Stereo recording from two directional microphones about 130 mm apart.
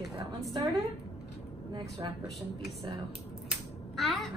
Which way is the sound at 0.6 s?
25° right (ahead or behind).